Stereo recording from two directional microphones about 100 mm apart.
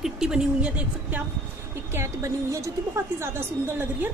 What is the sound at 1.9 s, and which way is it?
A woman's voice, 30° right (ahead or behind).